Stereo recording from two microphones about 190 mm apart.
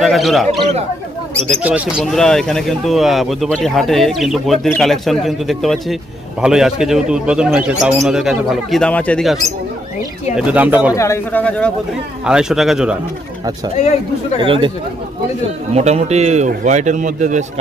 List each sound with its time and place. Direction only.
0.0 s speech: centre (ahead or behind)
1.6 s speech: 5° right (ahead or behind)
11.0 s speech: 10° left (ahead or behind)
14.4 s speech: 25° right (ahead or behind)
15.7 s a man's voice: 35° right (ahead or behind)